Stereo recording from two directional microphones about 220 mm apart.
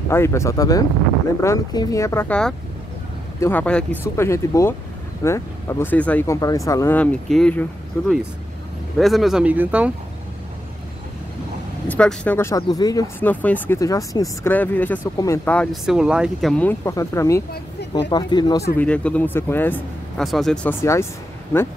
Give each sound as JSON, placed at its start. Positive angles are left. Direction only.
{"t": 0.1, "sound": "speech", "side_deg": 10}
{"t": 8.9, "sound": "speech", "side_deg": 0}
{"t": 11.9, "sound": "speech", "side_deg": 5}
{"t": 18.8, "sound": "speech", "side_deg": 5}